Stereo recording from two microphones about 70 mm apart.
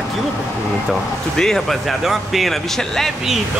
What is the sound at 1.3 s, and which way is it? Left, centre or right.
Speech, centre.